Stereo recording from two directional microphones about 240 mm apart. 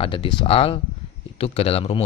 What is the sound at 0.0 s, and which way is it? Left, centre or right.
Speech, left.